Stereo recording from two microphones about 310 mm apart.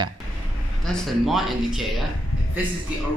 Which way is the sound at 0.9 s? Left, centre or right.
Centre.